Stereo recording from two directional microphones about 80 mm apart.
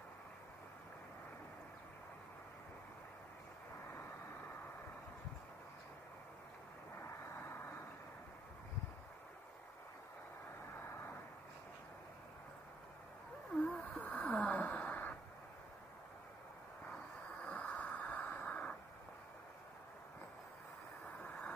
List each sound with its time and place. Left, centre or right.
7.0 s vehicle: left
13.6 s a sound: centre
16.8 s vehicle: centre
21.2 s vehicle: centre